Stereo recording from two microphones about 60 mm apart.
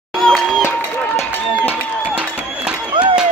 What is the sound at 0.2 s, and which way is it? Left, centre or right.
Crowd, centre.